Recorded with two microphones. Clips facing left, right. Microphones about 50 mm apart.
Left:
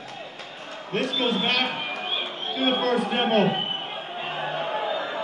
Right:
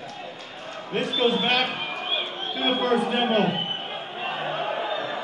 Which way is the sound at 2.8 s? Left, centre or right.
Right.